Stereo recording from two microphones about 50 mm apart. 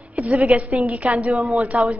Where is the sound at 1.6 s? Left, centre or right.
Right.